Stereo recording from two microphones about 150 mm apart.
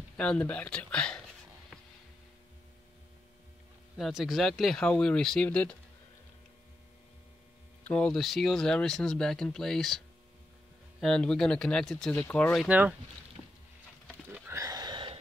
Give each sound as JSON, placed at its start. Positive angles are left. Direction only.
{"t": 0.2, "sound": "speech", "side_deg": 10}
{"t": 3.9, "sound": "speech", "side_deg": 0}
{"t": 7.8, "sound": "speech", "side_deg": 10}
{"t": 12.6, "sound": "speech", "side_deg": -10}
{"t": 14.5, "sound": "a sound", "side_deg": -25}